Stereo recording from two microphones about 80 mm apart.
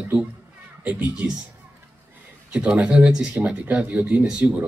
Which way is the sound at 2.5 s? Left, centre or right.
Centre.